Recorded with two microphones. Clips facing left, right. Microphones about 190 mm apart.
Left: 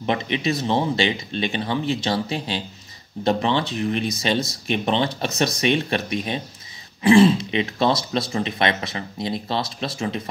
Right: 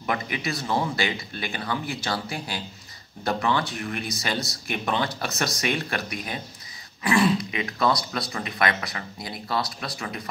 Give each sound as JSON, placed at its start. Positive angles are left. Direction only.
{"t": 0.0, "sound": "speech", "side_deg": 25}